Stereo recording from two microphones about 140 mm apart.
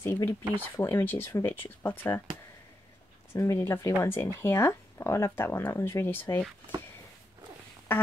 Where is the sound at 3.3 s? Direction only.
20° left (ahead or behind).